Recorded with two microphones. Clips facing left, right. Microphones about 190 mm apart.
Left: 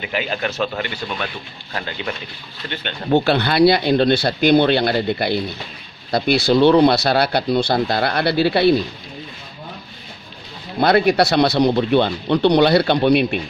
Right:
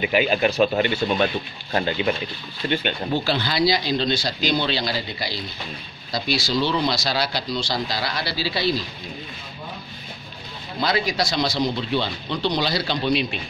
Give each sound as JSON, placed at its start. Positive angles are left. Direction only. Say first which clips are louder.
{"t": 0.0, "sound": "speech", "louder": "right 4 dB", "side_deg": -15}
{"t": 3.1, "sound": "speech", "louder": "left 9 dB", "side_deg": 60}
{"t": 10.8, "sound": "speech", "louder": "left 9 dB", "side_deg": 60}